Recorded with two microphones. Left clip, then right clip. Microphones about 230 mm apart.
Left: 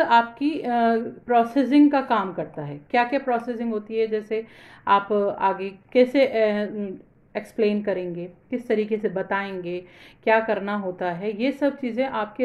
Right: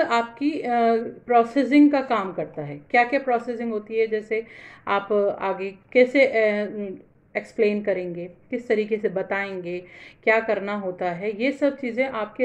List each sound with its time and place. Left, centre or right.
0.0 s a woman's voice: centre